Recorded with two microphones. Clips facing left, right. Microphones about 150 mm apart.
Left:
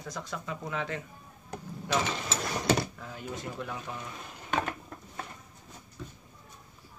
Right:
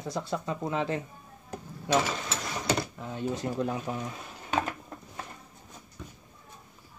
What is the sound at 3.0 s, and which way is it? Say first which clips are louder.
Speech: right 7 dB; 25° right (ahead or behind).